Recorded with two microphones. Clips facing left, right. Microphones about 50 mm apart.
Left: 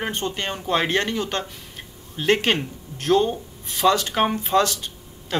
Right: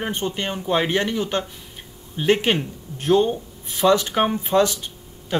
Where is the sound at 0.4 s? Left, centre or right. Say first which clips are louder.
Right 1 dB; centre.